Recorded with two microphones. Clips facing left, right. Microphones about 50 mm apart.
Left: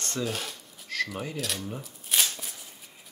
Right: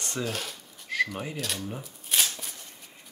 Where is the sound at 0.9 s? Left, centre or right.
Centre.